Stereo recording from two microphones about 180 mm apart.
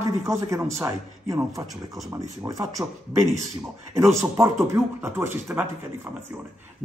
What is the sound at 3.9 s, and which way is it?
Speech, 15° right (ahead or behind).